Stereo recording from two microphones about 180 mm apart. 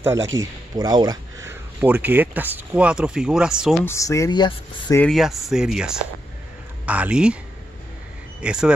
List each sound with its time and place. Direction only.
0.0 s speech: 15° right (ahead or behind)
3.8 s speech: 15° left (ahead or behind)
5.0 s speech: centre (ahead or behind)
8.4 s speech: 5° right (ahead or behind)